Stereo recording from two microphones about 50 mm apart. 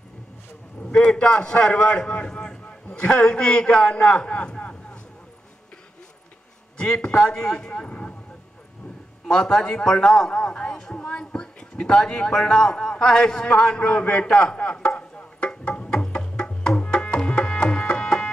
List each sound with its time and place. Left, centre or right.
0.8 s a man's voice: centre
6.8 s a man's voice: centre
9.3 s a man's voice: centre
11.0 s a sound: left
11.9 s a man's voice: centre
14.2 s music: centre